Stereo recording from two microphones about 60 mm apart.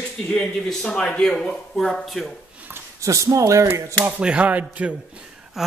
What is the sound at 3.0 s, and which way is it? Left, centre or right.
Speech, right.